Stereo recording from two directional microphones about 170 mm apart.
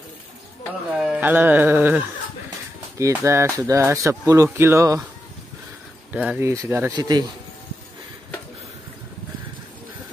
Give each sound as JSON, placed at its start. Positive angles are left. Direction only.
{"t": 0.9, "sound": "speech", "side_deg": -5}
{"t": 6.1, "sound": "speech", "side_deg": -10}